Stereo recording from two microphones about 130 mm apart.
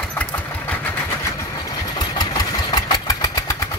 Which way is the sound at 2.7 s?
30° left (ahead or behind).